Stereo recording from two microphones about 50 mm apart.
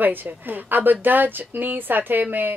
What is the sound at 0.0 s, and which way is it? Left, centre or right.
A woman's voice, right.